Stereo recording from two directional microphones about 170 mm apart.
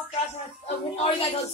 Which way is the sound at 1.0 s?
30° left (ahead or behind).